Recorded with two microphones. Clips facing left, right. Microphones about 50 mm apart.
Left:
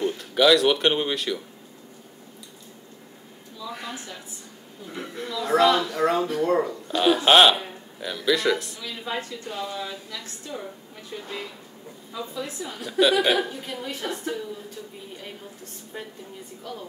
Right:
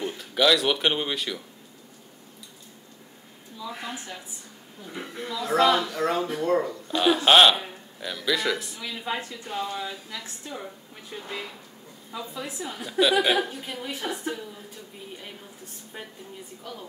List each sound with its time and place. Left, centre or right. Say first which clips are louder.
0.0 s speech: left 3 dB; centre
3.6 s a sound: even; centre
5.4 s speech: left 2 dB; centre
8.9 s a woman's voice: left 1 dB; centre
10.1 s a woman's voice: left 1 dB; centre
12.1 s a woman's voice: left 2 dB; centre
16.6 s a woman's voice: left 3 dB; centre